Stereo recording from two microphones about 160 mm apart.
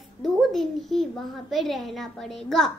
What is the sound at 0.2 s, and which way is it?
A child's voice, centre (ahead or behind).